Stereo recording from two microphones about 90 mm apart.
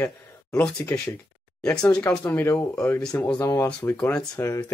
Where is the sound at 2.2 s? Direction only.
20° left (ahead or behind).